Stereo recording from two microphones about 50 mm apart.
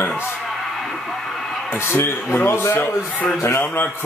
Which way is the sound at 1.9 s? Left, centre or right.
Left.